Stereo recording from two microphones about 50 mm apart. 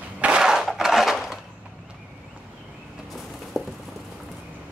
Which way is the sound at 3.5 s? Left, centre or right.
Centre.